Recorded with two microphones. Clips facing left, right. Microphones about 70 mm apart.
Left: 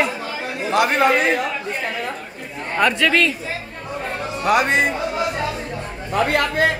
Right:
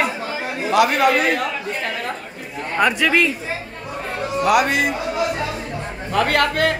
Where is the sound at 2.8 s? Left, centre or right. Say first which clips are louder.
Even; centre.